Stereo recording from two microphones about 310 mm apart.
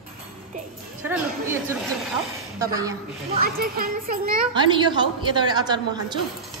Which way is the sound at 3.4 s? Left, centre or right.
Right.